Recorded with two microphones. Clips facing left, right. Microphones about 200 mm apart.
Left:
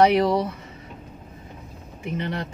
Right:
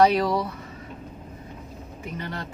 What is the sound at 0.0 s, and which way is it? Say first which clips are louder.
Speech: left 2 dB; 20° left (ahead or behind).